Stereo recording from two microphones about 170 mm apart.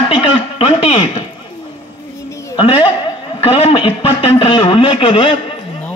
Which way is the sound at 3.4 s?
35° left (ahead or behind).